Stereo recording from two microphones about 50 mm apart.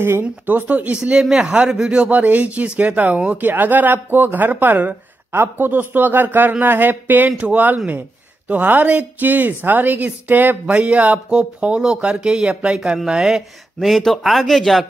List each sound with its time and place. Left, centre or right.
0.2 s speech: right
1.3 s speech: right
5.3 s speech: right
10.7 s speech: right
13.7 s speech: centre